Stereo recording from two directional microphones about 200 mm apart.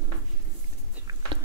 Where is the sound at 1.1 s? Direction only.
20° right (ahead or behind).